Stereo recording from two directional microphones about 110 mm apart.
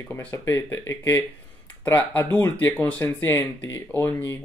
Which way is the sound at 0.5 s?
25° left (ahead or behind).